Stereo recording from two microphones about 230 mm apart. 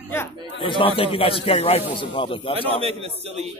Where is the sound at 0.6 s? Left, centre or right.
Left.